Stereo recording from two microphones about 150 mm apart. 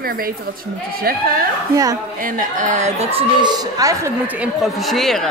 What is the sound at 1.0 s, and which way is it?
Speech, 80° right.